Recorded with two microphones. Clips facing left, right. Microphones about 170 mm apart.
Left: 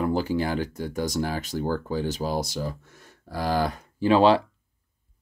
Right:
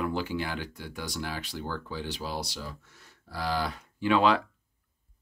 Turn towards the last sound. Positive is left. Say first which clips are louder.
# left 6 dB
turn(degrees=30)  # may be behind; listen again after turning